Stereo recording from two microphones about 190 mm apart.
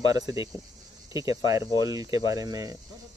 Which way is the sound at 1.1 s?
20° right (ahead or behind).